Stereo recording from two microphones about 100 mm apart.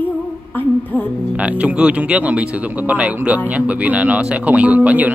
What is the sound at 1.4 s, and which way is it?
Speech, 15° right (ahead or behind).